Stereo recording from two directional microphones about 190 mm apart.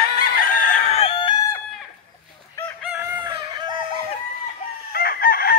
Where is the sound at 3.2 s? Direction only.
25° right (ahead or behind).